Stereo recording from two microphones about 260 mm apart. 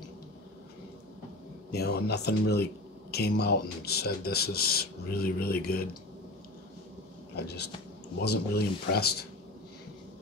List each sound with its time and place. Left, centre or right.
1.7 s speech: left
7.3 s speech: left